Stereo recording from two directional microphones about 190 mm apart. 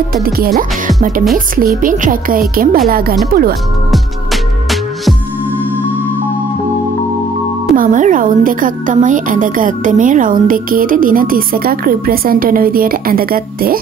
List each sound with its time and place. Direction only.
0.1 s a woman's voice: 50° right (ahead or behind)
1.8 s a woman's voice: 45° right (ahead or behind)
3.9 s music: centre (ahead or behind)
7.7 s a woman's voice: 45° right (ahead or behind)